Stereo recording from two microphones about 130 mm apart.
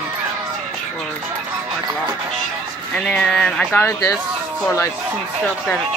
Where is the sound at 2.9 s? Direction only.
5° left (ahead or behind).